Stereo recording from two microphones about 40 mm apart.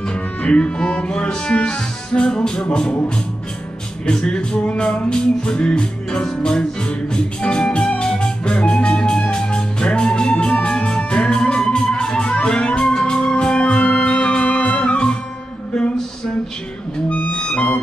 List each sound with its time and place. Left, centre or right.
0.4 s music: left
4.0 s music: left
17.3 s music: left